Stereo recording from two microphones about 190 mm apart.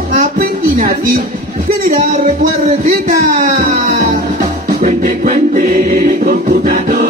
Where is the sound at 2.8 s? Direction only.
45° right (ahead or behind).